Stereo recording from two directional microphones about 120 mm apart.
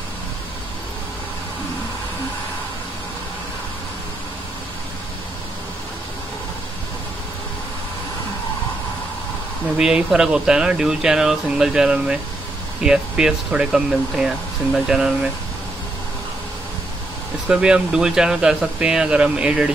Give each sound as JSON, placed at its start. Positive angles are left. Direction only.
{"t": 9.8, "sound": "speech", "side_deg": -5}
{"t": 17.5, "sound": "speech", "side_deg": -5}